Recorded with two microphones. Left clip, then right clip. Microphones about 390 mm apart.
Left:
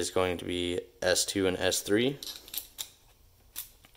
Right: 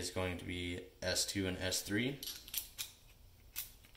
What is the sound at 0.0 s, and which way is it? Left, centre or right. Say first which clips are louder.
Speech: left 11 dB; left.